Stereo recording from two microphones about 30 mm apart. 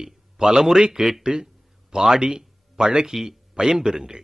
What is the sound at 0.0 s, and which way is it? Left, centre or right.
A man's voice, right.